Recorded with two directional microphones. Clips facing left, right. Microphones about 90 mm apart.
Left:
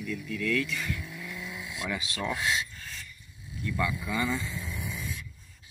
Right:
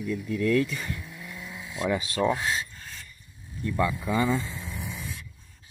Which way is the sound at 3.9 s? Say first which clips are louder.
Right 5 dB; 40° right (ahead or behind).